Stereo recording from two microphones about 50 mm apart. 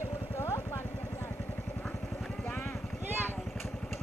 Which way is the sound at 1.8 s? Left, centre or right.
Centre.